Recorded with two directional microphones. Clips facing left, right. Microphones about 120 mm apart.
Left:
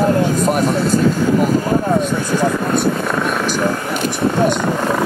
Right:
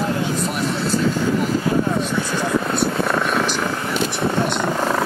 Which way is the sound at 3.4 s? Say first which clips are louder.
Left 4 dB; 45° left (ahead or behind).